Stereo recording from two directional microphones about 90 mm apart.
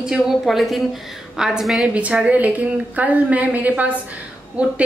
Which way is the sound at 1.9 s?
15° right (ahead or behind).